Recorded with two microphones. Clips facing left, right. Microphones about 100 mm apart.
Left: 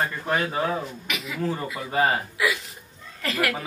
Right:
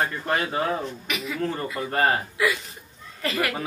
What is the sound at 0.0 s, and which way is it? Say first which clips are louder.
A woman's voice: even; centre (ahead or behind).